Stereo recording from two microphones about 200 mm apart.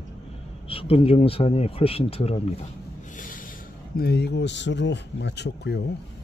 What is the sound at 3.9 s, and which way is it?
Speech, 50° left (ahead or behind).